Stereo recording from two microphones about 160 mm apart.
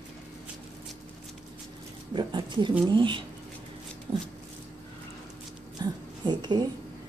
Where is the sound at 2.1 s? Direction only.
30° right (ahead or behind).